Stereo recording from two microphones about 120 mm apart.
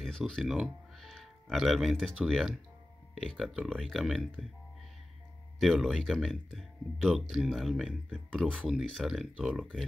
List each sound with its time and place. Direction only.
0.0 s speech: centre (ahead or behind)
5.6 s speech: centre (ahead or behind)